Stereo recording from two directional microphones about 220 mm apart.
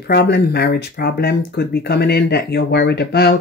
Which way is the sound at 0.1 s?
45° left (ahead or behind).